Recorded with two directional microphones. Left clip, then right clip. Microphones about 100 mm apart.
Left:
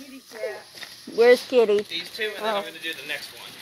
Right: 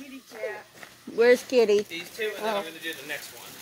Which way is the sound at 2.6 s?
15° right (ahead or behind).